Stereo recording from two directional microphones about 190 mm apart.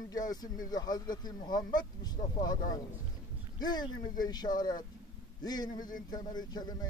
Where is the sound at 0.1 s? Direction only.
20° left (ahead or behind).